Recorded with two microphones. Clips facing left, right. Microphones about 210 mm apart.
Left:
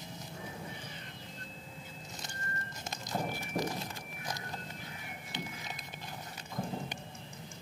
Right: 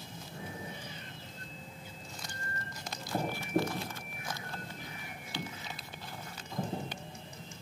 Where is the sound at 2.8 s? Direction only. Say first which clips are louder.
Right 2 dB; 20° left (ahead or behind).